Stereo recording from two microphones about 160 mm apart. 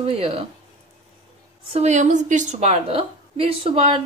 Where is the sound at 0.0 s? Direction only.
35° right (ahead or behind).